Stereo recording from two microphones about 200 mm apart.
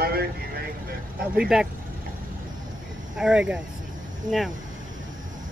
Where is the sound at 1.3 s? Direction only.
5° right (ahead or behind).